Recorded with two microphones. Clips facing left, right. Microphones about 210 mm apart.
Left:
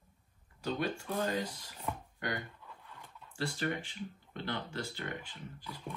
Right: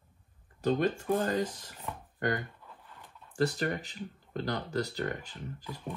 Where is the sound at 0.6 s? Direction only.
45° right (ahead or behind).